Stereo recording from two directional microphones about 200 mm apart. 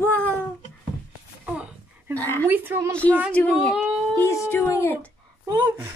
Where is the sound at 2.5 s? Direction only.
10° right (ahead or behind).